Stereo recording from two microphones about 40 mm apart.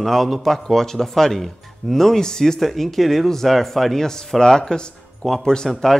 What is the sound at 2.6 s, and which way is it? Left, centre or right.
Speech, centre.